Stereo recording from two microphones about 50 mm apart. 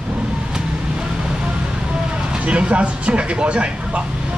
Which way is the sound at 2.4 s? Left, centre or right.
Right.